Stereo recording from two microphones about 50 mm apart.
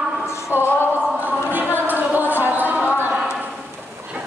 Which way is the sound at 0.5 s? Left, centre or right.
Left.